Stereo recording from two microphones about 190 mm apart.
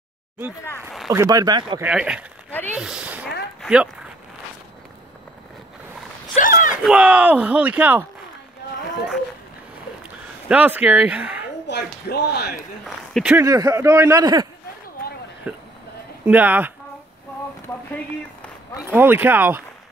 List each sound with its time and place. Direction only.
0.8 s a sound: centre (ahead or behind)
1.1 s speech: 20° right (ahead or behind)
1.8 s speech: 5° right (ahead or behind)
2.7 s a sound: 5° right (ahead or behind)
3.6 s speech: 5° right (ahead or behind)
6.3 s a sound: 45° left (ahead or behind)
6.8 s speech: 5° right (ahead or behind)
10.5 s speech: 10° right (ahead or behind)
11.6 s speech: 60° left (ahead or behind)
12.8 s a sound: centre (ahead or behind)
13.3 s speech: 15° right (ahead or behind)
15.5 s speech: 10° right (ahead or behind)
18.9 s speech: 10° right (ahead or behind)